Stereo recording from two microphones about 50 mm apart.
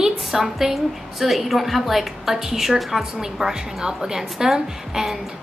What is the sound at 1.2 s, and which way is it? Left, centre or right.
A woman's voice, centre.